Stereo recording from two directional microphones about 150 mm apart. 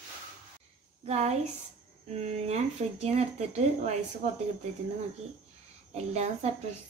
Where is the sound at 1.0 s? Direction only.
45° right (ahead or behind).